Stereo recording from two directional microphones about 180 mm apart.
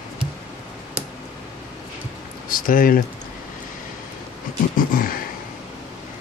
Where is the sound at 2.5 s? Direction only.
50° left (ahead or behind).